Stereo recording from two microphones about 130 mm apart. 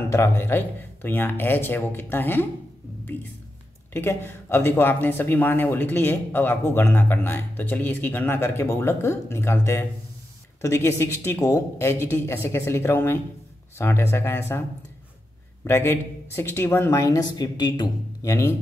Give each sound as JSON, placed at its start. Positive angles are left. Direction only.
{"t": 0.1, "sound": "speech", "side_deg": 20}
{"t": 15.6, "sound": "speech", "side_deg": 20}